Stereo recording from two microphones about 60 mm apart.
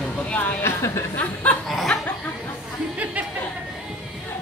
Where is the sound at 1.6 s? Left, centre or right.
Centre.